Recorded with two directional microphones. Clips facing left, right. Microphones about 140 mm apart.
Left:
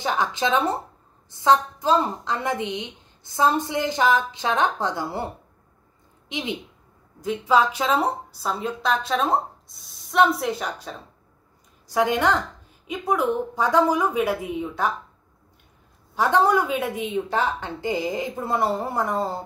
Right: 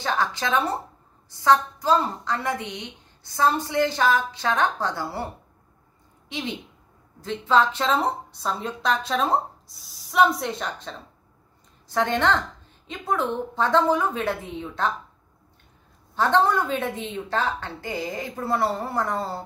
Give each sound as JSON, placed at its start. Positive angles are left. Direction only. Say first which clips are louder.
{"t": 0.0, "sound": "a woman's voice", "louder": "left 2 dB", "side_deg": 15}
{"t": 16.2, "sound": "speech", "louder": "left 1 dB", "side_deg": 10}